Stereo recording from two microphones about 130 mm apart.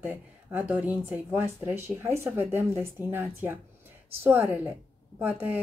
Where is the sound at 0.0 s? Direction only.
10° right (ahead or behind).